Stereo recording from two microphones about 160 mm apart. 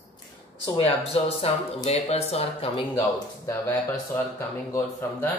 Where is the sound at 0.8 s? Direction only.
40° left (ahead or behind).